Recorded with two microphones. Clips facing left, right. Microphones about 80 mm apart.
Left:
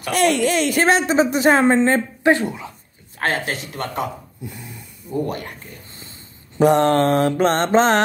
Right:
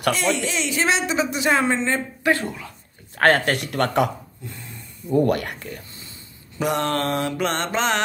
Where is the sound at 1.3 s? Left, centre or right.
Left.